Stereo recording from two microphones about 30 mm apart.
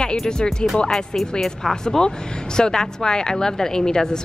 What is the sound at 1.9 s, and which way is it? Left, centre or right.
A woman's voice, centre.